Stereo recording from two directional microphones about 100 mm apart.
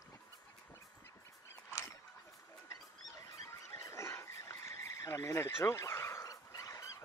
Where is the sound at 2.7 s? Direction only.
30° left (ahead or behind).